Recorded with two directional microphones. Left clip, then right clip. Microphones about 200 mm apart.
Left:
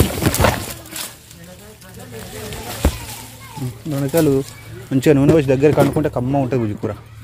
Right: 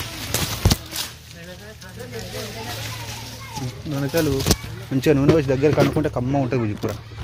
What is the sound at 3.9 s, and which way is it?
Speech, 45° left (ahead or behind).